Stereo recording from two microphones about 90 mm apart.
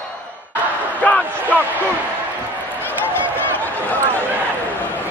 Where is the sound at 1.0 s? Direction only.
15° left (ahead or behind).